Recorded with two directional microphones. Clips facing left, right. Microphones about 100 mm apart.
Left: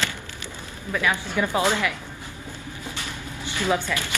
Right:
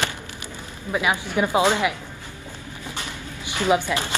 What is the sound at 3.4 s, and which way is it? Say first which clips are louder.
Speech: right 4 dB; 15° right (ahead or behind).